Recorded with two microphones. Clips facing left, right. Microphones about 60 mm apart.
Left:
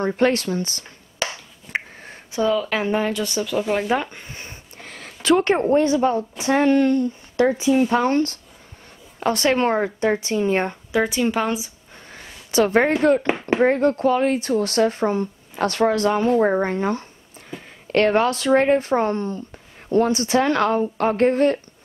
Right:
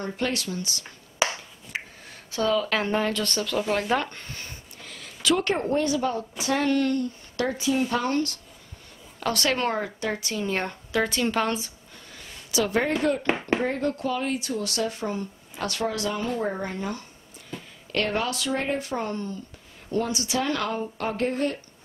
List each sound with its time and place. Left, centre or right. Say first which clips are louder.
0.0 s speech: left 9 dB; left
1.2 s finger snapping: right 1 dB; centre
1.7 s a sound: left 7 dB; left
2.3 s speech: left 3 dB; centre
4.7 s a woman's voice: left 4 dB; left; by 11.7 s centre
12.1 s a sound: left 2 dB; left
13.0 s speech: left 6 dB; left